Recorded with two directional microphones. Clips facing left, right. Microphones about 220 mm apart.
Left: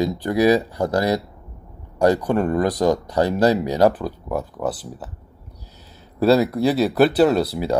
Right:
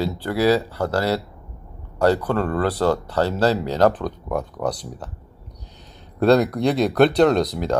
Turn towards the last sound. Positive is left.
turn(degrees=10)  # may be behind; listen again after turning